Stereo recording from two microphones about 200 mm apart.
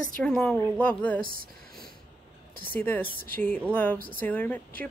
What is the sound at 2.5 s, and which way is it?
Speech, 50° left (ahead or behind).